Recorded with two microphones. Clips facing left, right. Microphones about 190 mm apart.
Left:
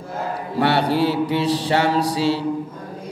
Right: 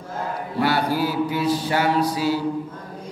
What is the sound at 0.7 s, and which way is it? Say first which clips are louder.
Mantra: left 4 dB; 70° left (ahead or behind).